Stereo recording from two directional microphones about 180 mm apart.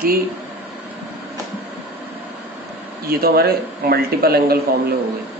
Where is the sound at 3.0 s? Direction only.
60° right (ahead or behind).